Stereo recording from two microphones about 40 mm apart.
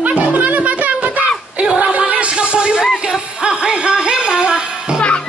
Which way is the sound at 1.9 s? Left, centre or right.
Right.